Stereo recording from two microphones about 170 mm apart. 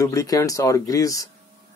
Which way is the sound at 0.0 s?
20° left (ahead or behind).